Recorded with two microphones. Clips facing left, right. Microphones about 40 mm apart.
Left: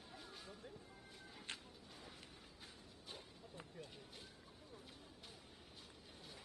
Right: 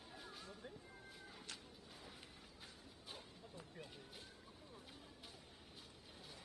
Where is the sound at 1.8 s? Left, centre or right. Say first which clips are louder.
Left 1 dB; centre.